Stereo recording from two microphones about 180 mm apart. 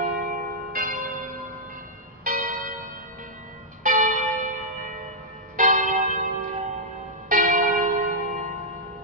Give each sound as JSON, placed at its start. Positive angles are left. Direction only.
{"t": 0.0, "sound": "church bell", "side_deg": -45}
{"t": 2.2, "sound": "church bell", "side_deg": -50}
{"t": 3.8, "sound": "church bell", "side_deg": -45}